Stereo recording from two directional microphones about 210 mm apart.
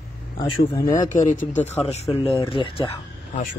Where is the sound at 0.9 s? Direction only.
40° left (ahead or behind).